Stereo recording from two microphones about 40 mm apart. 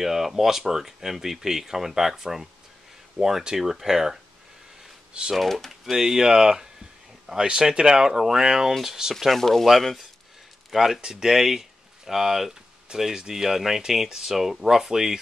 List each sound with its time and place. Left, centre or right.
0.0 s speech: centre
5.3 s speech: centre
5.9 s speech: centre
9.3 s speech: centre